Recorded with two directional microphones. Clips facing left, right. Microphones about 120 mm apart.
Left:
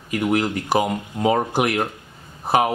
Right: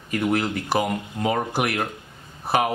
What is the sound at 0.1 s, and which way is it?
Speech, 15° left (ahead or behind).